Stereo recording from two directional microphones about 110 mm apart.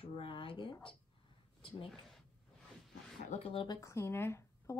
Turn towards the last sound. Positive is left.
turn(degrees=25)  # may be behind; listen again after turning